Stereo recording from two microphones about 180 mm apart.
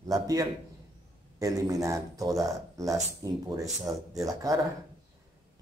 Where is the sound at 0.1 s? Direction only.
20° right (ahead or behind).